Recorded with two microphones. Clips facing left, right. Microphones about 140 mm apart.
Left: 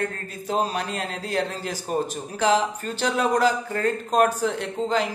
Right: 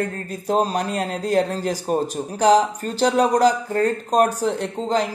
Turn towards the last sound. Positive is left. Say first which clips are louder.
# right 2 dB
turn(degrees=-40)  # may be behind; listen again after turning